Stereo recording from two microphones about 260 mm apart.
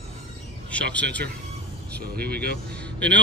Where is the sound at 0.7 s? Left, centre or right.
Centre.